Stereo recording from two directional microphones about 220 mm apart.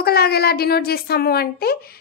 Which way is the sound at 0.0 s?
45° left (ahead or behind).